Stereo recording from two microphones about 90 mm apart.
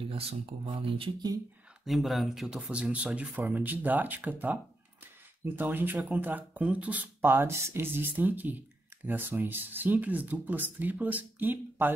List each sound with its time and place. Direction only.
0.0 s speech: 90° right
1.9 s speech: centre (ahead or behind)
2.7 s speech: 15° right (ahead or behind)
5.0 s a sound: 20° right (ahead or behind)
6.0 s speech: 20° right (ahead or behind)